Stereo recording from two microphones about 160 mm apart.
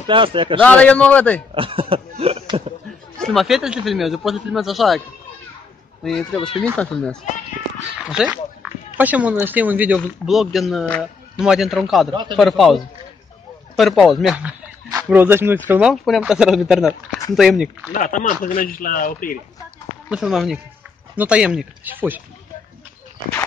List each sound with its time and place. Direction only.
0.0 s speech: 30° right (ahead or behind)
0.6 s a man's voice: 10° left (ahead or behind)
1.5 s cough: 35° right (ahead or behind)
3.2 s speech: centre (ahead or behind)
6.0 s speech: 5° left (ahead or behind)
8.9 s speech: 10° right (ahead or behind)
12.1 s speech: 30° right (ahead or behind)
12.4 s speech: centre (ahead or behind)
17.9 s speech: 55° left (ahead or behind)
20.1 s speech: 5° right (ahead or behind)